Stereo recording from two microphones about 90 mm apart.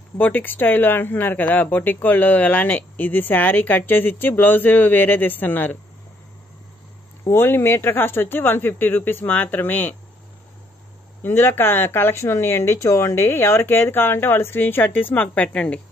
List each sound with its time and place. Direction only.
0.2 s speech: 20° left (ahead or behind)
7.2 s speech: 25° left (ahead or behind)
11.2 s speech: 25° left (ahead or behind)